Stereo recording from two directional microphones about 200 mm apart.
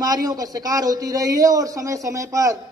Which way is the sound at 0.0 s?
20° right (ahead or behind).